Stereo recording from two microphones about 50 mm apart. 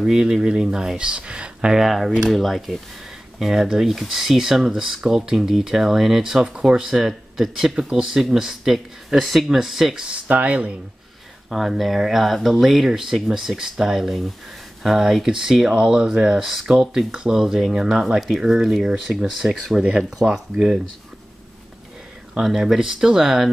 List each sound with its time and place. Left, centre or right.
0.0 s speech: centre
1.8 s speech: centre
10.0 s speech: right
11.5 s speech: centre
22.4 s speech: centre